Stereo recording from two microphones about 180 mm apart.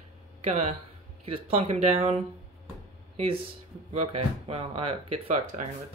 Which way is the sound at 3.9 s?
35° right (ahead or behind).